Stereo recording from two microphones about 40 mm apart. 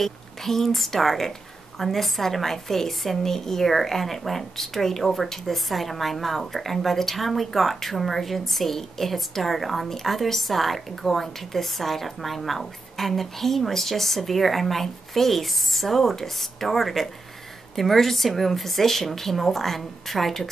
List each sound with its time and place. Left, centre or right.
0.0 s a woman's voice: centre